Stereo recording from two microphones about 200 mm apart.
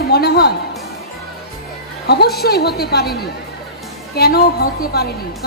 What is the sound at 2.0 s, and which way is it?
A woman's voice, 55° left (ahead or behind).